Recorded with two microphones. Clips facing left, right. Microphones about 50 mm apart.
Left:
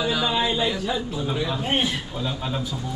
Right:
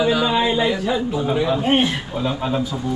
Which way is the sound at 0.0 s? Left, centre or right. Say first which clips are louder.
Right 5 dB; centre.